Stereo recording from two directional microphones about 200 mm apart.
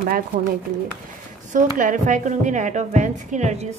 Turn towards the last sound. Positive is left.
turn(degrees=-35)  # may be behind; listen again after turning